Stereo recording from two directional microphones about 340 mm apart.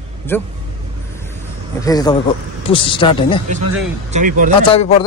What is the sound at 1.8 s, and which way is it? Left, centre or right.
A man's voice, centre.